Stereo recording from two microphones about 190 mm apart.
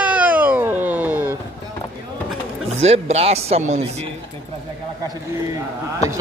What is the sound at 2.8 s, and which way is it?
Speech, 35° right (ahead or behind).